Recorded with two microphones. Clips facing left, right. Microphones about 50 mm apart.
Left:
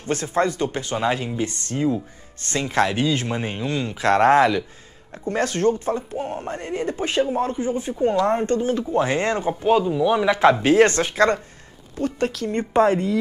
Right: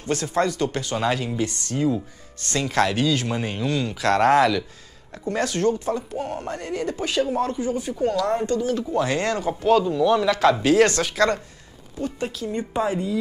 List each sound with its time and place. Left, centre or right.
0.0 s speech: left
12.0 s speech: left